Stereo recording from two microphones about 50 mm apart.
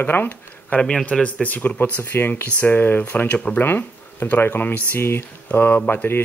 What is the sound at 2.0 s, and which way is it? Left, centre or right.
Speech, left.